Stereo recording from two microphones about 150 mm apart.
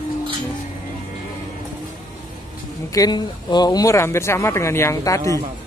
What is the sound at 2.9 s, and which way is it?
Speech, 25° left (ahead or behind).